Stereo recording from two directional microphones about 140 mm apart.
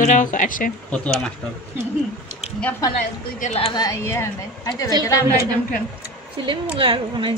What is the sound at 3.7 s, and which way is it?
A woman's voice, 25° left (ahead or behind).